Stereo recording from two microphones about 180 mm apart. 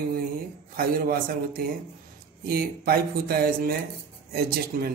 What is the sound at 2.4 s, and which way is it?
Speech, 60° right (ahead or behind).